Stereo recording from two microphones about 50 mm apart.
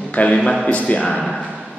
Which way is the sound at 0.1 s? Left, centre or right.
Left.